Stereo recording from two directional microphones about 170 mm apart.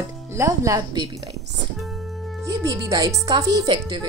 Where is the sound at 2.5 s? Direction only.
20° right (ahead or behind).